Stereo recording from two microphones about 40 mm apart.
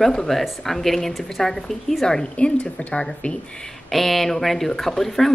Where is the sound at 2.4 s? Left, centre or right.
Left.